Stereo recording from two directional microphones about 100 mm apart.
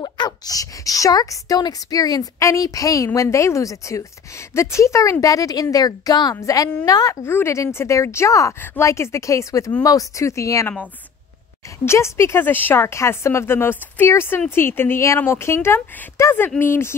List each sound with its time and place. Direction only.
0.0 s speech: 40° left (ahead or behind)
11.8 s speech: 25° left (ahead or behind)